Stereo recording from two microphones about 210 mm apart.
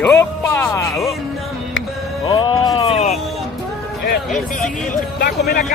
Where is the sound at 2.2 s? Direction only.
20° left (ahead or behind).